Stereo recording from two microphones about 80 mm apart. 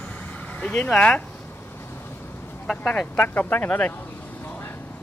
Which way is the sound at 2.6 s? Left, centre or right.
Centre.